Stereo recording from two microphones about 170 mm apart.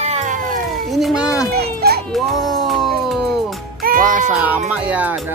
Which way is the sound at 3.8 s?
55° right (ahead or behind).